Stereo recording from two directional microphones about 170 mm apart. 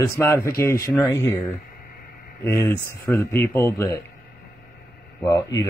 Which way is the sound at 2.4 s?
15° left (ahead or behind).